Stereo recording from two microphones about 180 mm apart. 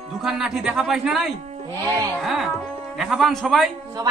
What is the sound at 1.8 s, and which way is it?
Speech, 15° right (ahead or behind).